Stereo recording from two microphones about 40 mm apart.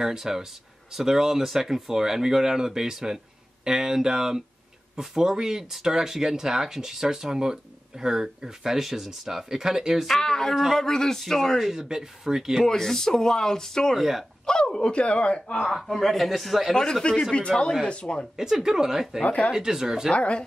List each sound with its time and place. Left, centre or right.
0.0 s speech: centre
10.0 s a man's voice: centre
11.6 s speech: centre
12.6 s speech: centre
13.9 s a man's voice: centre
14.4 s speech: centre
15.6 s a man's voice: centre
16.7 s speech: centre
18.3 s speech: centre
19.2 s speech: left
19.5 s speech: centre
20.1 s speech: left